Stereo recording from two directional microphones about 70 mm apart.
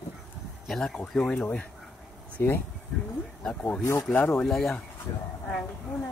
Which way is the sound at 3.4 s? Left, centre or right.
Centre.